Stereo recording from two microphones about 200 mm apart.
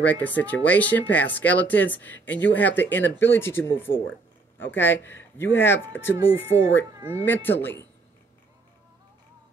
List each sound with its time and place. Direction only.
0.0 s speech: 10° left (ahead or behind)
6.9 s speech: 20° right (ahead or behind)
7.6 s speech: 10° left (ahead or behind)